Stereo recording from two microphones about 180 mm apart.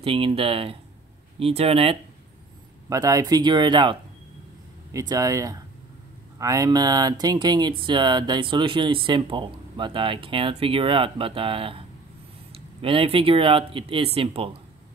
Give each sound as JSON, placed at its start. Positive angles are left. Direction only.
{"t": 0.0, "sound": "speech", "side_deg": -30}
{"t": 2.9, "sound": "speech", "side_deg": -20}
{"t": 12.8, "sound": "speech", "side_deg": -30}